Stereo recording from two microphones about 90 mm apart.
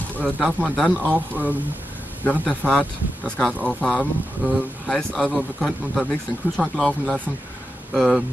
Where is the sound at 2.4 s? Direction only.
10° left (ahead or behind).